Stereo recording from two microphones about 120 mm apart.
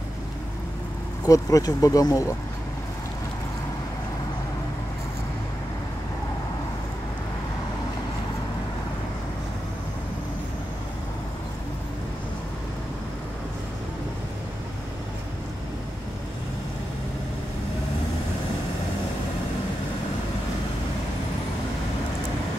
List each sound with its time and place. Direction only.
1.2 s speech: 30° left (ahead or behind)